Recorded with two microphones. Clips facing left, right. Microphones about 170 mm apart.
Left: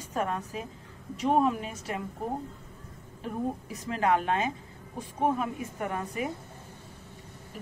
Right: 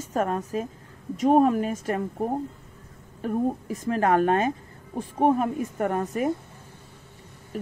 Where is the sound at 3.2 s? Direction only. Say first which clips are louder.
Right 7 dB; 50° right (ahead or behind).